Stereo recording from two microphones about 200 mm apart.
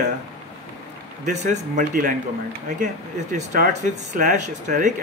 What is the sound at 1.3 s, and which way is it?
Speech, 40° right (ahead or behind).